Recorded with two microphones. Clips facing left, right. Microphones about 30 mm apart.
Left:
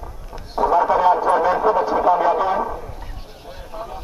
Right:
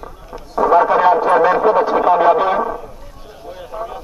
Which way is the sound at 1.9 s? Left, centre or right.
Right.